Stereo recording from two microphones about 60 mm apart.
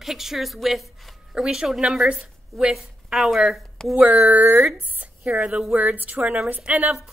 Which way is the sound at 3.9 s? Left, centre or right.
Right.